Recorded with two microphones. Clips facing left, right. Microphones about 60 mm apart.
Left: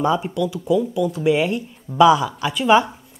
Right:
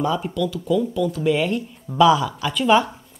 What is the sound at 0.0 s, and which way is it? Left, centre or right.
Speech, centre.